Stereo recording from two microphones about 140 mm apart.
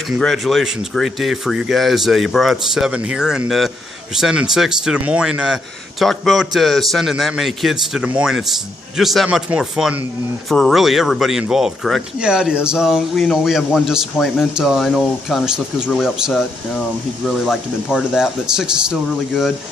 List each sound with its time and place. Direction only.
0.2 s speech: centre (ahead or behind)